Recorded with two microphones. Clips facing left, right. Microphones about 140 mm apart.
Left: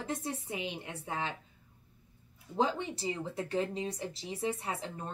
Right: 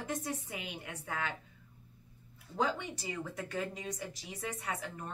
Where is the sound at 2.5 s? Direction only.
30° left (ahead or behind).